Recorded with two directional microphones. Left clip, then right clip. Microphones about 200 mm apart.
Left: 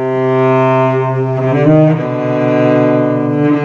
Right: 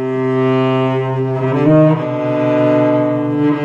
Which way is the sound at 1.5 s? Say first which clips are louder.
Left 1 dB; 5° right (ahead or behind).